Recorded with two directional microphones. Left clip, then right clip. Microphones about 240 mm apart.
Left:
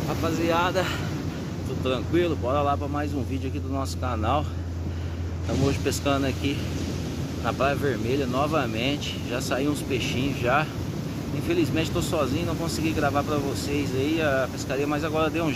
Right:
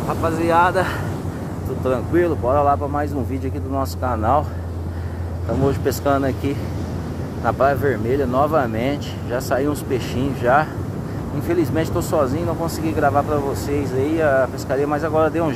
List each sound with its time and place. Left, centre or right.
0.5 s speech: centre
5.6 s speech: centre
7.4 s speech: centre
11.7 s speech: centre